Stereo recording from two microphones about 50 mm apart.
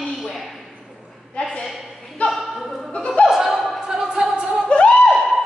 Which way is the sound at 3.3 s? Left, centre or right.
Centre.